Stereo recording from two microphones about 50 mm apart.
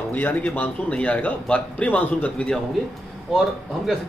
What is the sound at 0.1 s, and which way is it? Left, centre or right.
Speech, left.